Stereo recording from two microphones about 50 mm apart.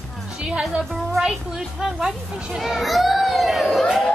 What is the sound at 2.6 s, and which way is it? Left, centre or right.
A child's voice, centre.